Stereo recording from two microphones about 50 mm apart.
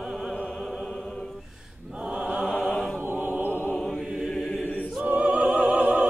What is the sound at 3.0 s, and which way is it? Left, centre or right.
Chant, right.